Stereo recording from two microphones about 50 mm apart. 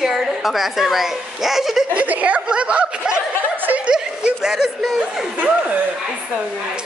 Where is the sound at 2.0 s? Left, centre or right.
Right.